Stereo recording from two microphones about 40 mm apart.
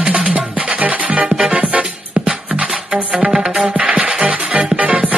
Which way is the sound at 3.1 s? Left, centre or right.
Right.